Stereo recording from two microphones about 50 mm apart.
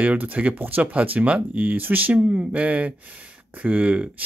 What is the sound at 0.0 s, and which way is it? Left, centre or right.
Speech, right.